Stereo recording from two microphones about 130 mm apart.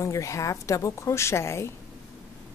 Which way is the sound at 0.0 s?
25° left (ahead or behind).